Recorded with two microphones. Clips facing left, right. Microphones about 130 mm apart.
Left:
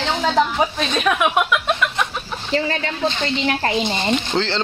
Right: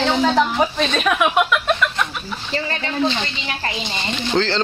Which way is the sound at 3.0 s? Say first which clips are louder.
Left 4 dB; 50° left (ahead or behind).